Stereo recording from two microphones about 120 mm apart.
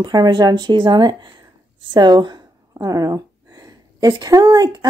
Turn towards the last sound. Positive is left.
turn(degrees=-30)  # may be behind; listen again after turning